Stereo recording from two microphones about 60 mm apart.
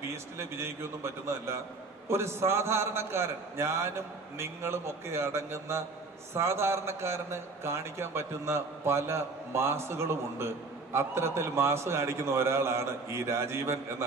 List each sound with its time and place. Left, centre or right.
0.1 s a man's voice: right
2.0 s a man's voice: right